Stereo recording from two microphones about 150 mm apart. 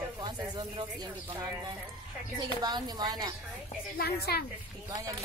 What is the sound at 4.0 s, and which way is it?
Speech, 90° left.